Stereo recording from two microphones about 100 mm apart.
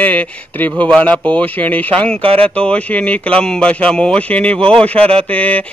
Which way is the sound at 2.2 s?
75° right (ahead or behind).